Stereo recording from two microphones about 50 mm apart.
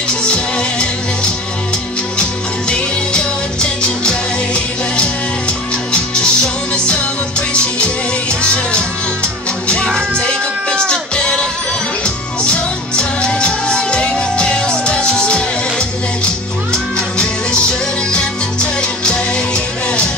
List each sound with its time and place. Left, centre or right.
0.1 s music: centre
2.7 s music: centre
5.9 s music: centre
9.9 s music: centre
16.7 s music: centre